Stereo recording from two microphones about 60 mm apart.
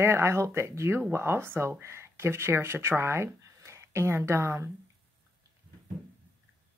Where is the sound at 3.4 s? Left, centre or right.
Right.